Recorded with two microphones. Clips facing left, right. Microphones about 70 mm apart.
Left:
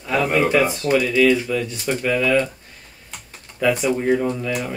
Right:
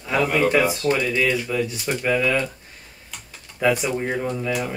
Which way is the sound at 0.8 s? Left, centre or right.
Centre.